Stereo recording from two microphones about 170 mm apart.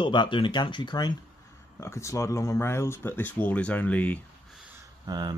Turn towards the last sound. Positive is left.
turn(degrees=-25)  # may be behind; listen again after turning